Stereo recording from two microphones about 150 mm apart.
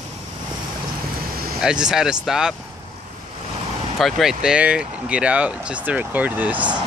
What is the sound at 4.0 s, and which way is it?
Speech, centre (ahead or behind).